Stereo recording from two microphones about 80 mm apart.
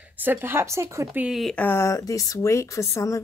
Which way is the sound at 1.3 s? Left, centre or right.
Centre.